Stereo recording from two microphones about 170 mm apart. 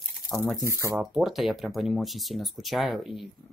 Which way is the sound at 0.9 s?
Centre (ahead or behind).